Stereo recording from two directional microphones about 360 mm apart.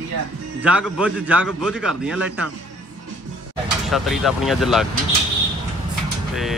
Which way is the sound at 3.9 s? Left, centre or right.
Centre.